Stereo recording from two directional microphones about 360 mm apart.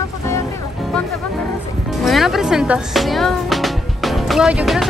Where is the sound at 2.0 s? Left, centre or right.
Centre.